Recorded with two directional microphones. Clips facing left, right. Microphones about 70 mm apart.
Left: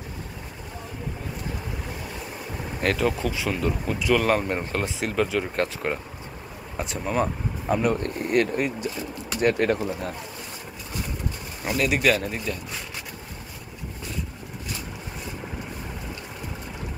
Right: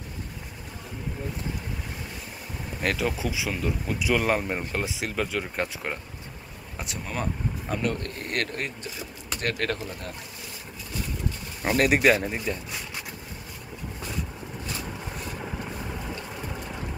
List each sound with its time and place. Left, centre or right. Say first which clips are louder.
2.8 s speech: left 3 dB; centre
4.0 s speech: left 3 dB; centre
7.1 s speech: left 6 dB; centre
11.6 s speech: right 2 dB; right
12.0 s speech: right 1 dB; right